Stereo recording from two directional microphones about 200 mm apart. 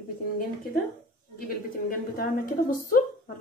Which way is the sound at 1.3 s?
45° left (ahead or behind).